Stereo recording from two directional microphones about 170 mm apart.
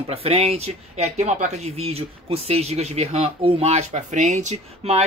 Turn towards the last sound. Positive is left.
turn(degrees=-40)  # may be behind; listen again after turning